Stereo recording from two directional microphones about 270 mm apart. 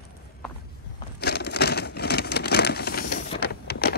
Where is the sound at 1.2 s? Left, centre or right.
Left.